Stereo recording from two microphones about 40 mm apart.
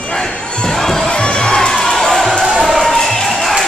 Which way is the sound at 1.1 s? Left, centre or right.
Left.